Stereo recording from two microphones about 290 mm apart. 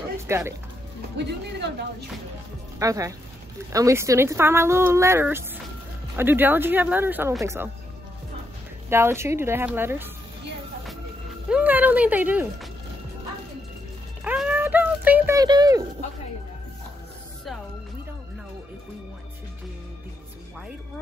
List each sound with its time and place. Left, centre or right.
0.3 s speech: centre
1.1 s speech: right
2.8 s speech: centre
8.8 s speech: centre
11.4 s speech: centre
14.2 s a sound: centre